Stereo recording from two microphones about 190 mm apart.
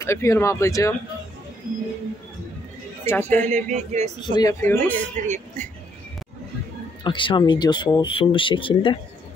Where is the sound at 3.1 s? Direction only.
10° left (ahead or behind).